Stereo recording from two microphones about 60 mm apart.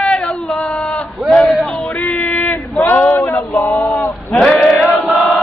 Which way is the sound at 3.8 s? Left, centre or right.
Left.